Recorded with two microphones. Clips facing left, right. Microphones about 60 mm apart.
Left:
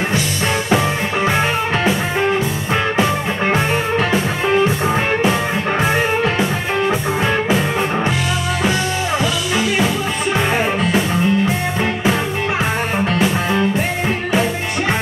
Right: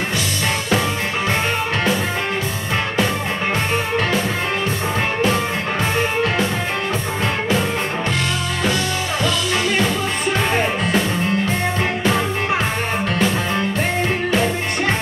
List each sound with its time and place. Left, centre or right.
0.7 s music: centre
10.5 s music: centre
13.2 s music: centre